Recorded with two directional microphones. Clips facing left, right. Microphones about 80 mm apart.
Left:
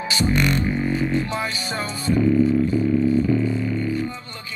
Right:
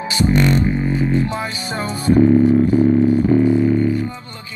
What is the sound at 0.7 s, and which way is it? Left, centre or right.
Music, centre.